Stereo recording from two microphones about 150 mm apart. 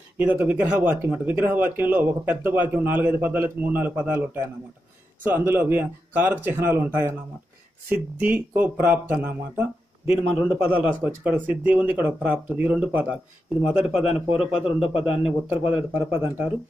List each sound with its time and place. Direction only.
0.2 s speech: 10° right (ahead or behind)
5.2 s speech: 15° right (ahead or behind)